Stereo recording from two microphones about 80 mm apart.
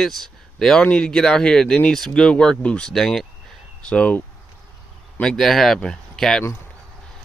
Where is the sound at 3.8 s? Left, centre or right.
Centre.